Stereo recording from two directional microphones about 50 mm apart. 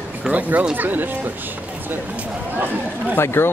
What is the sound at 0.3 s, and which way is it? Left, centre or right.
Speech, right.